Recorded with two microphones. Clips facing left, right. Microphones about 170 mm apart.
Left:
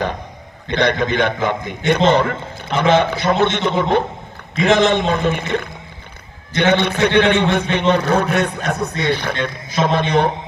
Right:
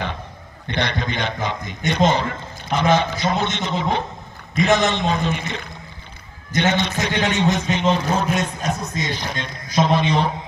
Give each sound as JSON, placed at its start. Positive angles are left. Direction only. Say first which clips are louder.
{"t": 0.7, "sound": "a man's voice", "louder": "left 7 dB", "side_deg": 50}